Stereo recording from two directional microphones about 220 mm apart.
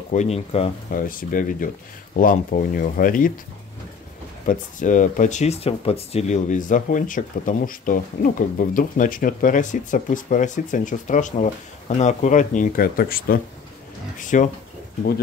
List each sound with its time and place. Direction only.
0.1 s speech: 30° left (ahead or behind)
1.0 s speech: 40° left (ahead or behind)
4.5 s speech: 35° left (ahead or behind)